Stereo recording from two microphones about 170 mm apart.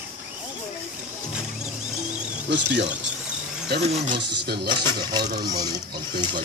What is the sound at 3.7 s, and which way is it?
Speech, 75° right (ahead or behind).